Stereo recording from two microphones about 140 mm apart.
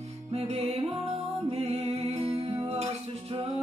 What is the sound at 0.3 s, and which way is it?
Music, 45° right (ahead or behind).